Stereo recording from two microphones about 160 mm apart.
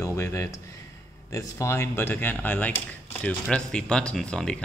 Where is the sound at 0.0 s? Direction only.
20° left (ahead or behind).